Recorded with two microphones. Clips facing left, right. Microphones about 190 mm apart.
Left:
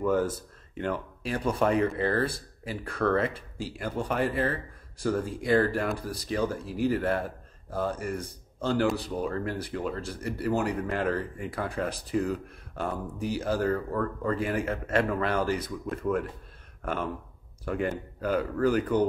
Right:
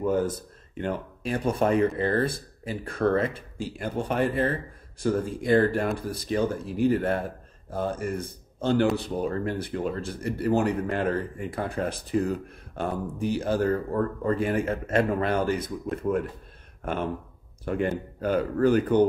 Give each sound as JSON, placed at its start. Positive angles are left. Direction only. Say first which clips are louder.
{"t": 0.0, "sound": "speech", "louder": "right 1 dB", "side_deg": -20}
{"t": 16.8, "sound": "speech", "louder": "right 2 dB", "side_deg": -25}